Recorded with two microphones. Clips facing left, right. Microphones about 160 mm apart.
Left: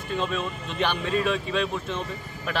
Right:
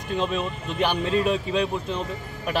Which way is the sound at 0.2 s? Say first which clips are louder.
Right 3 dB; 15° right (ahead or behind).